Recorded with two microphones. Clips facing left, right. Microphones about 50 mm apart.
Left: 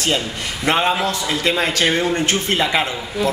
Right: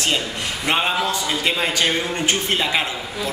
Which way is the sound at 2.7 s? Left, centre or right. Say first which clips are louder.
Left 3 dB; centre.